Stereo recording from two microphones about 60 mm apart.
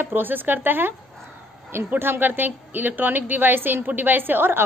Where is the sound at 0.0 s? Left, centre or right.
Right.